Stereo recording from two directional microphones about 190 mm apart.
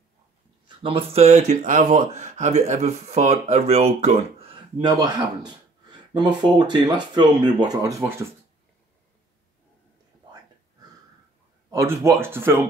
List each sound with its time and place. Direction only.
0.7 s speech: 30° right (ahead or behind)
4.8 s speech: 20° right (ahead or behind)
11.7 s speech: 15° right (ahead or behind)